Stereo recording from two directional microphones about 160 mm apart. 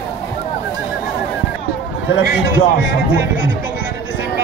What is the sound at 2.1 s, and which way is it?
Speech, 75° left (ahead or behind).